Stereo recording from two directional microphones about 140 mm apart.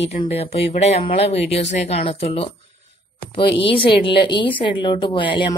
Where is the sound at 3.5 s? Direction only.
40° left (ahead or behind).